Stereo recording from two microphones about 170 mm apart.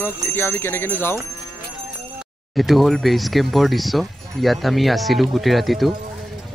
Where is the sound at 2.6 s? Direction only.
Centre (ahead or behind).